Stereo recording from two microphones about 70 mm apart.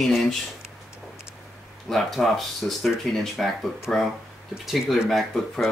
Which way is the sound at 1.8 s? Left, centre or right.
Centre.